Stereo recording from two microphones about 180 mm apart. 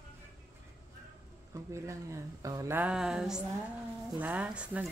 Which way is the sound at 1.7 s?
15° right (ahead or behind).